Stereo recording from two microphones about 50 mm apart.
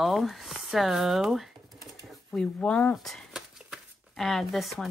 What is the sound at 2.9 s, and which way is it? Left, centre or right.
Speech, centre.